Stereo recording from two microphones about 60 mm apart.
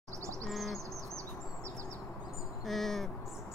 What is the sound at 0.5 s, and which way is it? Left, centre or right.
Bird, centre.